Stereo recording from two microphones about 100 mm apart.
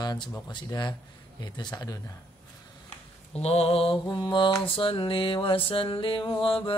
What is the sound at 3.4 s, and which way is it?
Mantra, 90° left.